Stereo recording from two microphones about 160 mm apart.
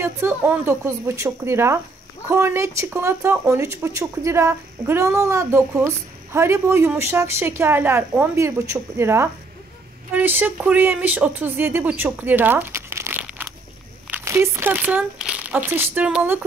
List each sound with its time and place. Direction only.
0.0 s speech: 15° right (ahead or behind)